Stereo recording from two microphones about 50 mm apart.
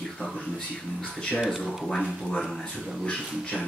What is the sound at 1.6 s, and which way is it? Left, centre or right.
Speech, centre.